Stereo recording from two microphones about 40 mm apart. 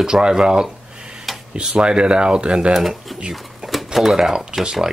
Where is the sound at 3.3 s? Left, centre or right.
Centre.